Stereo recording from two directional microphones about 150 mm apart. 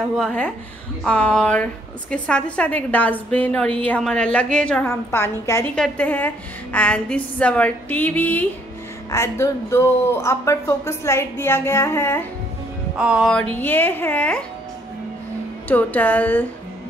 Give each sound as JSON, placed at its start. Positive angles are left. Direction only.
{"t": 0.2, "sound": "a woman's voice", "side_deg": 5}
{"t": 12.9, "sound": "music", "side_deg": -5}
{"t": 13.3, "sound": "a woman's voice", "side_deg": 10}
{"t": 15.7, "sound": "a woman's voice", "side_deg": 10}